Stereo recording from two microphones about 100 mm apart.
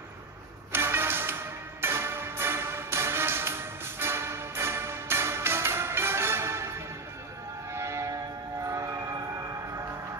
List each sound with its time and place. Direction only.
0.7 s music: 25° right (ahead or behind)
7.7 s music: 30° right (ahead or behind)
8.6 s train: 30° right (ahead or behind)